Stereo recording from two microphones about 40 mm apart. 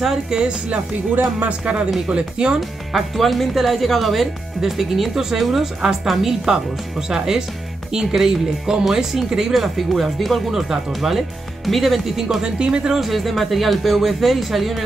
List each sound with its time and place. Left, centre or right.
0.0 s speech: centre
2.0 s speech: right
2.9 s speech: centre
12.4 s speech: right
13.0 s speech: centre